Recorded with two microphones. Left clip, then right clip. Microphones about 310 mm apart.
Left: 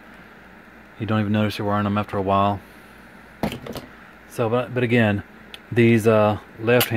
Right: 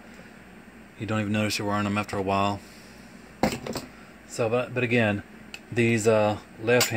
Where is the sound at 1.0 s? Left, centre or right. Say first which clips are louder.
Left 4 dB; left.